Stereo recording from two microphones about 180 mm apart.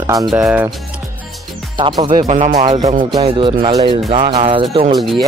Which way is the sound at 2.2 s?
45° right (ahead or behind).